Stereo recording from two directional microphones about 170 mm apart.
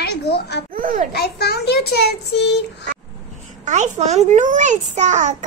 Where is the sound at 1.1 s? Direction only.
70° left (ahead or behind).